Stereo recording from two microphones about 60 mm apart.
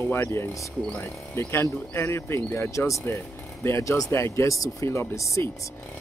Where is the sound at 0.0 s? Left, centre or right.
Left.